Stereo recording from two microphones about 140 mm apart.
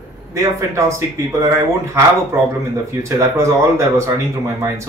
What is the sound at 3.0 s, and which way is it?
Speech, 20° right (ahead or behind).